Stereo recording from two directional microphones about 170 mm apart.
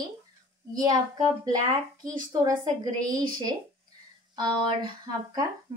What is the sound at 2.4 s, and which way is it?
Speech, 20° right (ahead or behind).